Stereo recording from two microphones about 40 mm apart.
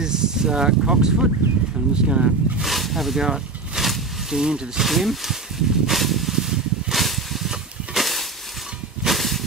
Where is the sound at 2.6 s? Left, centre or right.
Centre.